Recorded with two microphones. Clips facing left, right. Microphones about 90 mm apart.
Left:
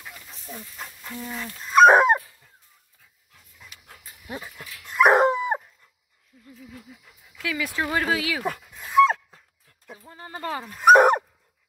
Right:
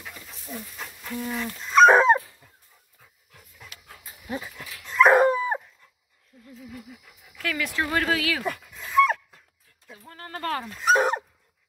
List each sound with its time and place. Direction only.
0.0 s dog: 5° left (ahead or behind)
3.8 s dog: 20° left (ahead or behind)
7.4 s speech: 15° left (ahead or behind)
8.7 s dog: 15° left (ahead or behind)
10.0 s a sound: 15° left (ahead or behind)
10.8 s speech: 60° left (ahead or behind)